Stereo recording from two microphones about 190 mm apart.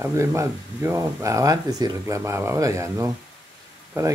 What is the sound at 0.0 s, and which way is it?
Speech, 15° right (ahead or behind).